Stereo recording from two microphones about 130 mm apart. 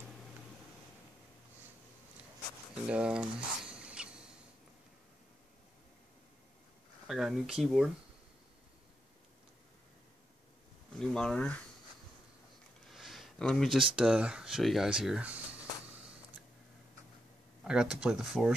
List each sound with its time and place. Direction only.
2.7 s a sound: 5° right (ahead or behind)
7.1 s speech: 5° right (ahead or behind)
11.0 s speech: 5° left (ahead or behind)
12.9 s speech: centre (ahead or behind)
17.6 s speech: 5° right (ahead or behind)